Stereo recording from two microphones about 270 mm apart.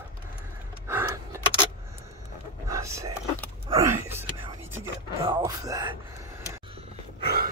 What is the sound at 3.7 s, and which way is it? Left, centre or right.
Whispering, centre.